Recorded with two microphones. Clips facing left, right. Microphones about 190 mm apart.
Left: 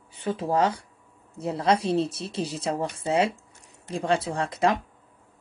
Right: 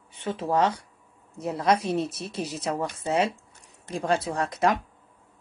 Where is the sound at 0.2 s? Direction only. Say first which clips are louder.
Even; 30° left (ahead or behind).